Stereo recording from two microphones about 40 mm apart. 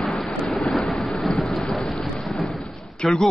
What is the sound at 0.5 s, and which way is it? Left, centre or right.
Vehicle, centre.